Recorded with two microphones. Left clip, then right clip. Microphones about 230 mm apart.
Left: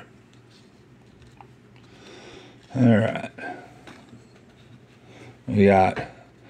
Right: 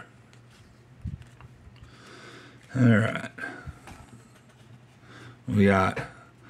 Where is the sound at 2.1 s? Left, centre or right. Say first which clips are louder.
Left 2 dB; centre.